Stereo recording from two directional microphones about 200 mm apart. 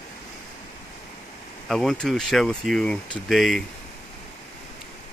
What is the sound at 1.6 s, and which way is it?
Speech, centre (ahead or behind).